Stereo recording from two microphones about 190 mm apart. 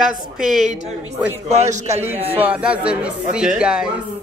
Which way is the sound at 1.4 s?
35° right (ahead or behind).